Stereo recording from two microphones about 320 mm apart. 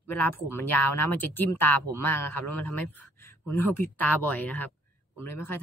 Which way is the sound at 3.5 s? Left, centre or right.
Centre.